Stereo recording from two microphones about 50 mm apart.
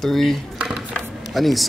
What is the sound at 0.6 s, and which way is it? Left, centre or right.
Dishes, centre.